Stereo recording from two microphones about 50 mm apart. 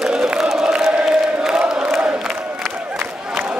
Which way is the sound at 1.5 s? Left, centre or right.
Centre.